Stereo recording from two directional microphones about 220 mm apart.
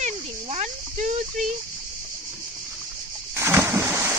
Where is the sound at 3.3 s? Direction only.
10° right (ahead or behind).